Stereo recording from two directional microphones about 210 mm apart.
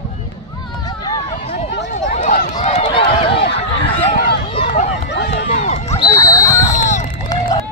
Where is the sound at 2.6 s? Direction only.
25° left (ahead or behind).